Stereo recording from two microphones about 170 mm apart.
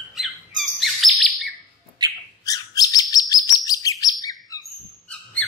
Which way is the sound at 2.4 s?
20° left (ahead or behind).